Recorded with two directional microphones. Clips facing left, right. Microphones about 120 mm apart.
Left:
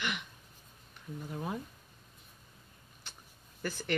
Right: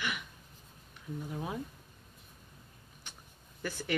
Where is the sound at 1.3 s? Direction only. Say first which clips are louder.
Left 2 dB; 5° right (ahead or behind).